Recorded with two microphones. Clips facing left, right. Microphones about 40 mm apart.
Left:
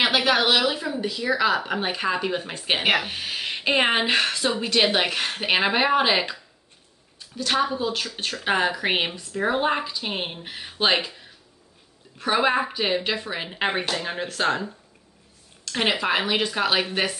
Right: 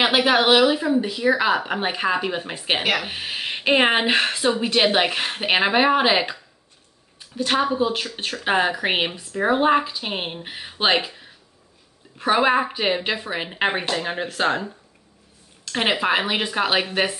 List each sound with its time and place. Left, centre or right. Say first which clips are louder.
0.0 s speech: right 3 dB; centre